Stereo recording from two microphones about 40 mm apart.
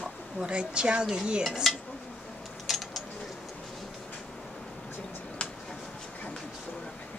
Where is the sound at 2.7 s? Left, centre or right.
Centre.